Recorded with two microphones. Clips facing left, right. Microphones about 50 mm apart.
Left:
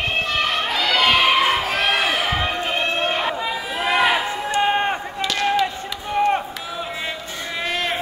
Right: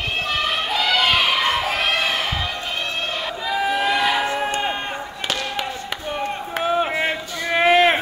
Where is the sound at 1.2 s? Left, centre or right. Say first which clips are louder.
Left 3 dB; centre.